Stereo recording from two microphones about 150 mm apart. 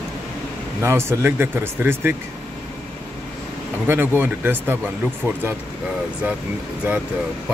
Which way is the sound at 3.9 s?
15° right (ahead or behind).